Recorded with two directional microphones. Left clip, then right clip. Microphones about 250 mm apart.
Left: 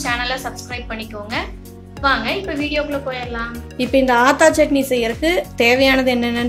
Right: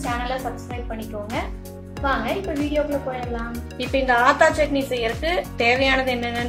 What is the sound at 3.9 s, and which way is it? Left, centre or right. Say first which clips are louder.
Speech: left 4 dB; left.